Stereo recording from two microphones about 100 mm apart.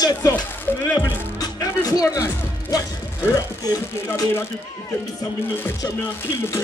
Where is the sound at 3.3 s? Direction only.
40° left (ahead or behind).